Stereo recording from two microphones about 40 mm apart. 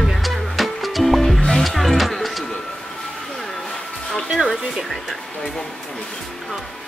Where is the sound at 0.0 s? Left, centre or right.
Centre.